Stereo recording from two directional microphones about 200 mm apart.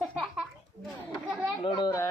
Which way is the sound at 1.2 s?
5° right (ahead or behind).